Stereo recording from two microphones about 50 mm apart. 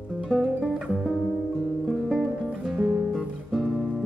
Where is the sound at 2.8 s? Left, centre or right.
Right.